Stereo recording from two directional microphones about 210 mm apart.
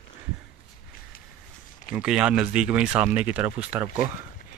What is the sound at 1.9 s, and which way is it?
Speech, 5° right (ahead or behind).